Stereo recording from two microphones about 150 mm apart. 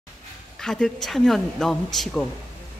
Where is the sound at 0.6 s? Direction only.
5° left (ahead or behind).